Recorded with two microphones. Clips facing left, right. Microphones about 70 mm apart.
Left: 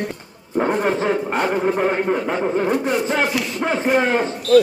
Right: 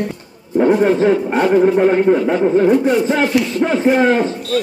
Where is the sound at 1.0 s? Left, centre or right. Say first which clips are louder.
Right 6 dB; centre.